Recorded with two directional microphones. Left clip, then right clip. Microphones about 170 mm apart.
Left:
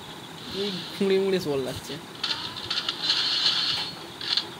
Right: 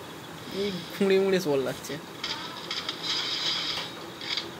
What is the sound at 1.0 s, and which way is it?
Speech, 5° left (ahead or behind).